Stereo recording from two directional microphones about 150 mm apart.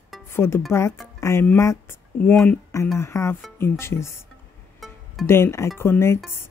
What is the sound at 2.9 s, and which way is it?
Speech, 20° left (ahead or behind).